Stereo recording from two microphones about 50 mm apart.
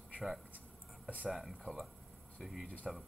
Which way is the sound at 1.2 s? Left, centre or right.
Centre.